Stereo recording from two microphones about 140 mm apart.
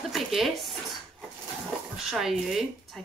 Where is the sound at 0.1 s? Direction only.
Centre (ahead or behind).